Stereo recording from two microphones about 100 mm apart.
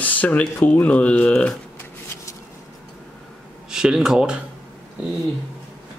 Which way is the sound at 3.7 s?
5° right (ahead or behind).